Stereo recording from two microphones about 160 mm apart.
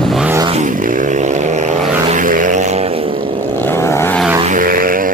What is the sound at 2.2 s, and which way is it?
Vehicle, 55° right (ahead or behind).